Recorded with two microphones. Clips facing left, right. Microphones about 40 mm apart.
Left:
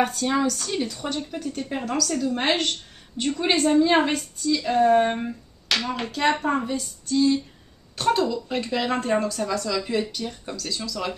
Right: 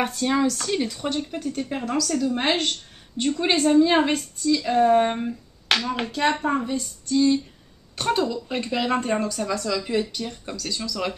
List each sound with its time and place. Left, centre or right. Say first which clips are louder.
0.0 s speech: even; centre
5.7 s clapping: right 2 dB; right
6.4 s a woman's voice: even; centre